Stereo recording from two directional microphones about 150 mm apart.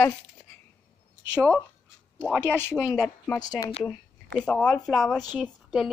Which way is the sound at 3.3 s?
25° left (ahead or behind).